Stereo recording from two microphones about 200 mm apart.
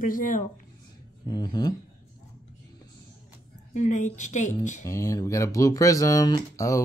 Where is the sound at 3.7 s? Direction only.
35° left (ahead or behind).